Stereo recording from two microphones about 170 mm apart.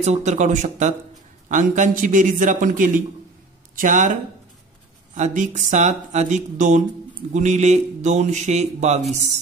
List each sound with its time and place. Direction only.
0.0 s speech: 40° right (ahead or behind)